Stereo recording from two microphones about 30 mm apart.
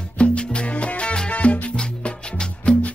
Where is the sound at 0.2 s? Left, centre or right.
Left.